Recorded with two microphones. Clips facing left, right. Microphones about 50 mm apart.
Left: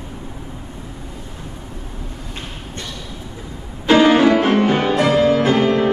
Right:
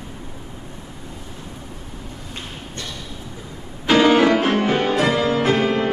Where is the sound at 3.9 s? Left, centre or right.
Left.